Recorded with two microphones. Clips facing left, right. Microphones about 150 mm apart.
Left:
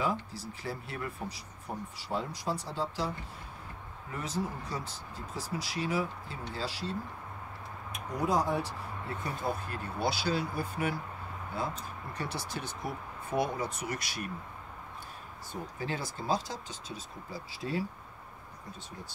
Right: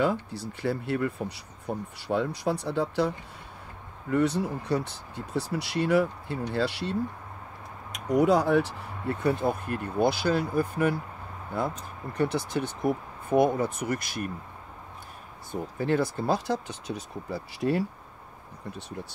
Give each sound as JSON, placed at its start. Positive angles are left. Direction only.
{"t": 0.0, "sound": "speech", "side_deg": -65}
{"t": 4.1, "sound": "speech", "side_deg": -65}
{"t": 9.2, "sound": "speech", "side_deg": -60}
{"t": 15.8, "sound": "speech", "side_deg": -60}